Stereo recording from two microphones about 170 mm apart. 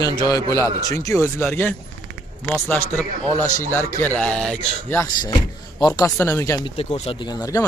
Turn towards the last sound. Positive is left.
turn(degrees=20)  # may be behind; listen again after turning